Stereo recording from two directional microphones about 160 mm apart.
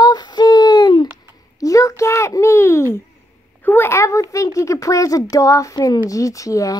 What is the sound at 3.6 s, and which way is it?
A child's voice, 15° left (ahead or behind).